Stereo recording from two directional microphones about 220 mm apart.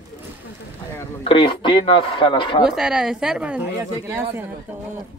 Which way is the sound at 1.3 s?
25° left (ahead or behind).